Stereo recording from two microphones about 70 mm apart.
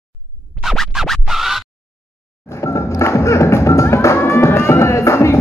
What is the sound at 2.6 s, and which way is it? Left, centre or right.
Music, left.